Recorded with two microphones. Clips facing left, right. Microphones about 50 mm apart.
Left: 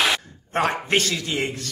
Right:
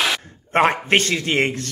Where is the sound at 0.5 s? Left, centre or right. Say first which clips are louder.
Right 5 dB; right.